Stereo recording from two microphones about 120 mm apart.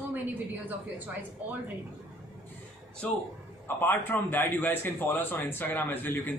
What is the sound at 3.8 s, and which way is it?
Speech, 15° left (ahead or behind).